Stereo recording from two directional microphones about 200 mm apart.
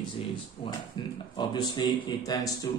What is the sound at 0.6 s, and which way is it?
A man's voice, 25° left (ahead or behind).